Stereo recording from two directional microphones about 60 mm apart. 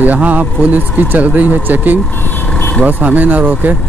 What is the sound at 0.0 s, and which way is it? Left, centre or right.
Speech, right.